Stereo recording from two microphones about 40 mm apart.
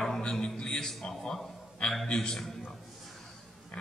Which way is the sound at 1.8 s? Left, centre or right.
Left.